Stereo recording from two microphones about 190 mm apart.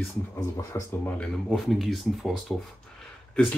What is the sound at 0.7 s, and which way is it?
Speech, 15° left (ahead or behind).